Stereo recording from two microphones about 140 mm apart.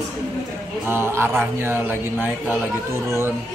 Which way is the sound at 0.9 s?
15° right (ahead or behind).